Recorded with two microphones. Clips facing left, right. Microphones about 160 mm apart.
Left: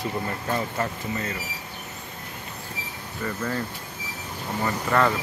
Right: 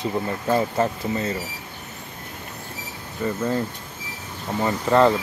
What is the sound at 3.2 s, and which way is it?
Speech, 20° right (ahead or behind).